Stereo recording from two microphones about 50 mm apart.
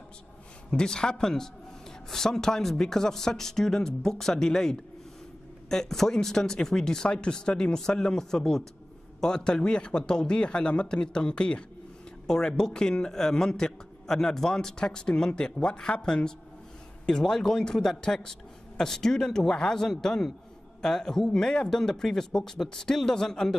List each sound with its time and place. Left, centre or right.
0.7 s a man's voice: centre